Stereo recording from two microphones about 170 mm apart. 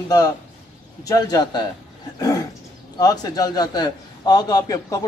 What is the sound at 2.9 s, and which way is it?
A man's voice, 20° left (ahead or behind).